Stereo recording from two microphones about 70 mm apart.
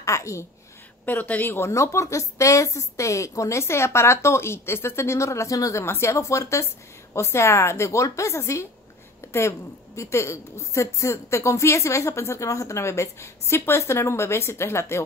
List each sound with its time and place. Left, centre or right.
0.0 s a woman's voice: left
1.0 s speech: left
1.7 s a woman's voice: left